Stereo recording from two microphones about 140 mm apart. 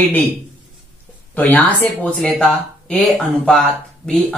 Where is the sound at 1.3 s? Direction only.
10° left (ahead or behind).